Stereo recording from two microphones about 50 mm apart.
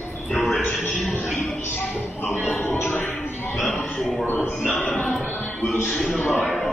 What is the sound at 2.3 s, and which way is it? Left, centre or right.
Music, left.